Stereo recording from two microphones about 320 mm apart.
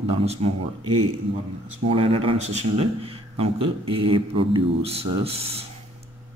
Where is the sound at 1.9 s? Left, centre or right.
Centre.